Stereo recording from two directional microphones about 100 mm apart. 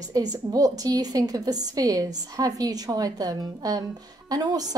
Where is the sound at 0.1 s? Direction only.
40° right (ahead or behind).